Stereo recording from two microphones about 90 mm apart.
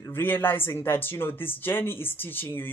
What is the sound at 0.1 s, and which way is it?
Speech, 25° left (ahead or behind).